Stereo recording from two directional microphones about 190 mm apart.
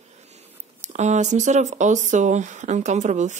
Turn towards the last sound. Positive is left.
turn(degrees=-40)  # may be behind; listen again after turning